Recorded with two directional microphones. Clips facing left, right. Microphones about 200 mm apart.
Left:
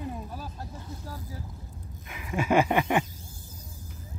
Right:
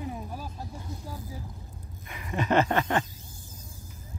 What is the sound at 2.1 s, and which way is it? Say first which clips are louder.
Speech: left 1 dB; 5° left (ahead or behind).